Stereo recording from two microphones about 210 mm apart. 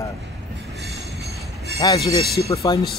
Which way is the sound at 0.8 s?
Centre (ahead or behind).